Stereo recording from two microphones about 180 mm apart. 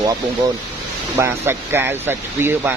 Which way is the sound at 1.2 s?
10° right (ahead or behind).